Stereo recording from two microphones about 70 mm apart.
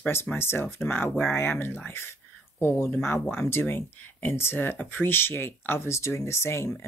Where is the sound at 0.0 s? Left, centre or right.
Left.